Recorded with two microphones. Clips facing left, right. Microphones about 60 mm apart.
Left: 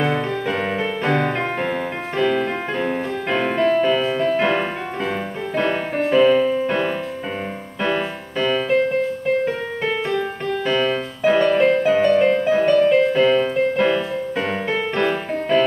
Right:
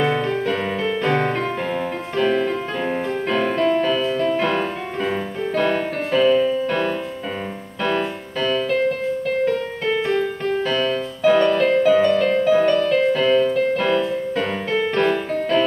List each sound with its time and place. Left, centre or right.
0.0 s music: centre
10.7 s music: centre
11.5 s music: left
12.5 s music: centre